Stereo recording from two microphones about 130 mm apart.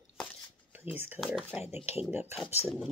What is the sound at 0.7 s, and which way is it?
Speech, 15° right (ahead or behind).